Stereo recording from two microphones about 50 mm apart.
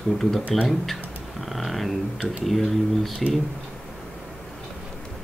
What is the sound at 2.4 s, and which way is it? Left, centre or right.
Speech, centre.